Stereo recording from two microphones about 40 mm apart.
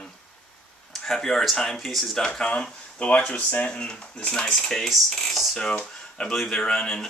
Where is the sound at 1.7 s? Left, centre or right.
Centre.